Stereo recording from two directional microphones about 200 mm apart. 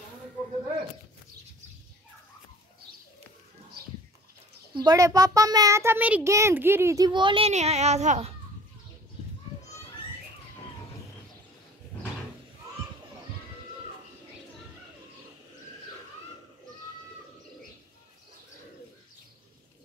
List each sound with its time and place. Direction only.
4.7 s a child's voice: 20° right (ahead or behind); by 8.4 s 35° right (ahead or behind)